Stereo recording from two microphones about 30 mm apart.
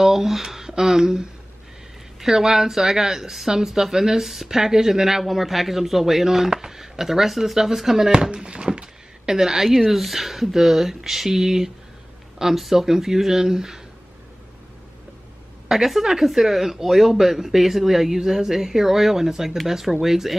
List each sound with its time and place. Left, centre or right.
0.0 s speech: centre
5.2 s speech: centre
8.1 s a sound: right
9.4 s speech: centre
9.8 s speech: centre; by 13.8 s right
15.7 s speech: centre